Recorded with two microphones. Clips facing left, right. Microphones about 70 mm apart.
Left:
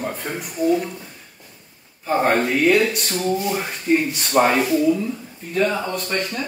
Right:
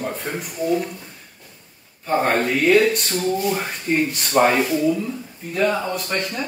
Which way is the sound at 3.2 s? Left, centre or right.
Centre.